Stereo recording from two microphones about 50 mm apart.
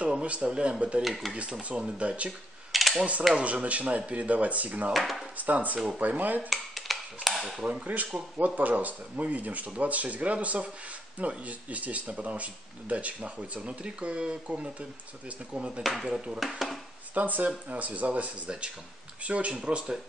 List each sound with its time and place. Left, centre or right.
0.0 s speech: right
1.0 s speech: centre
1.3 s speech: right
2.7 s mechanisms: centre
3.3 s speech: right
4.9 s speech: centre
5.4 s speech: right
6.5 s dishes: centre
7.8 s speech: right
15.8 s speech: centre
17.1 s speech: right